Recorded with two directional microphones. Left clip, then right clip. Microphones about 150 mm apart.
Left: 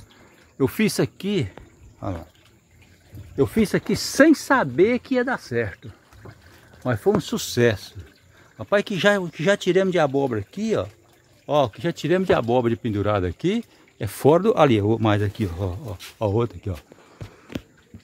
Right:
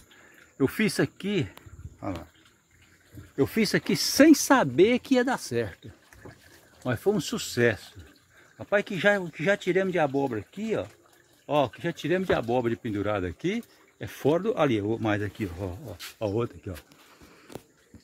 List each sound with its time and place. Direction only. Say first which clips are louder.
0.6 s speech: left 4 dB; 20° left (ahead or behind)
3.5 s speech: left 3 dB; centre (ahead or behind)
4.0 s speech: left 2 dB; 10° right (ahead or behind)
6.2 s boat: left 2 dB; 5° left (ahead or behind)
6.8 s speech: left 5 dB; 15° left (ahead or behind)
7.3 s speech: left 4 dB; 25° left (ahead or behind)
8.5 s speech: left 5 dB; 40° left (ahead or behind)